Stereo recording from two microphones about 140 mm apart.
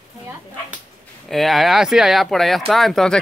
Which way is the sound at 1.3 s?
Centre (ahead or behind).